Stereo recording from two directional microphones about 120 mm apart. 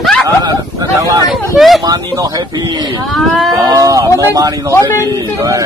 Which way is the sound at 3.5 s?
30° right (ahead or behind).